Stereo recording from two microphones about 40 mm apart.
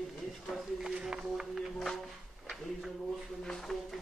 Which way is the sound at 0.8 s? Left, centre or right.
Centre.